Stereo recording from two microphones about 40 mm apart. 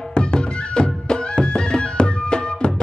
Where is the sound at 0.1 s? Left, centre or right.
Left.